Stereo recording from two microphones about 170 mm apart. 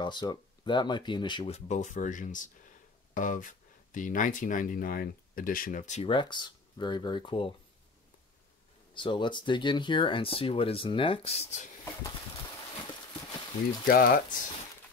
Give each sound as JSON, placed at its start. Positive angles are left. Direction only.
{"t": 0.0, "sound": "speech", "side_deg": 25}
{"t": 1.7, "sound": "speech", "side_deg": 45}
{"t": 6.0, "sound": "speech", "side_deg": 30}
{"t": 8.9, "sound": "speech", "side_deg": 30}
{"t": 13.8, "sound": "speech", "side_deg": 60}